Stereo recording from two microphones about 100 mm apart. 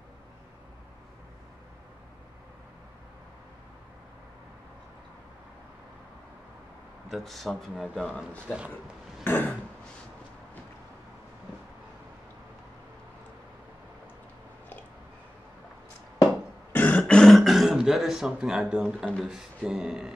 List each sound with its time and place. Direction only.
7.1 s speech: centre (ahead or behind)
9.2 s throat clearing: 15° left (ahead or behind)
16.7 s a sound: 15° left (ahead or behind)
17.0 s beatboxing: 5° left (ahead or behind)
19.2 s speech: 5° right (ahead or behind)